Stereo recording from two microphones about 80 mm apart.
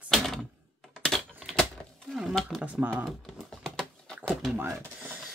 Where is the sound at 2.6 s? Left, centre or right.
Centre.